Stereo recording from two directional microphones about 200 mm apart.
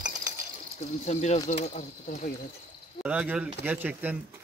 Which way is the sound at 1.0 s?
35° left (ahead or behind).